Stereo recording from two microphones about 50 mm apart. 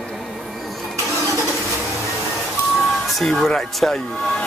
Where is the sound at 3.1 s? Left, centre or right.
Centre.